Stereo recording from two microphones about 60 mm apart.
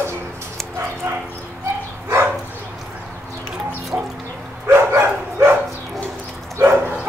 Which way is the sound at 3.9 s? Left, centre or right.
Right.